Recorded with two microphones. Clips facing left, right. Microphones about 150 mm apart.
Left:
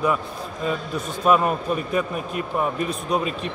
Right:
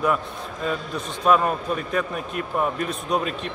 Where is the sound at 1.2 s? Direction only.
5° left (ahead or behind).